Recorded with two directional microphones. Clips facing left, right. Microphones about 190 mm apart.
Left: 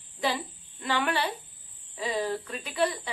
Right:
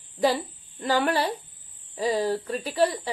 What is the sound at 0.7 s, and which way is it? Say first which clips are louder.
Speech: right 5 dB; 40° right (ahead or behind).